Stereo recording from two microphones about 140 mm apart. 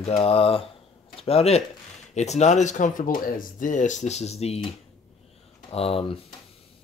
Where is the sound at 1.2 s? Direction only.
45° left (ahead or behind).